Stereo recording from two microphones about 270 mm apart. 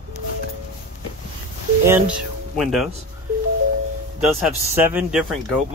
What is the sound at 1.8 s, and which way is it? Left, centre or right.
Speech, centre.